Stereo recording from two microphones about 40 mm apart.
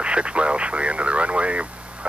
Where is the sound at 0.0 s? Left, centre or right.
Right.